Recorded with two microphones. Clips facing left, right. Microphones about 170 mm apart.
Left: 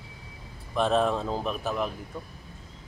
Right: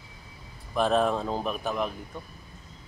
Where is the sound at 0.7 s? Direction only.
Centre (ahead or behind).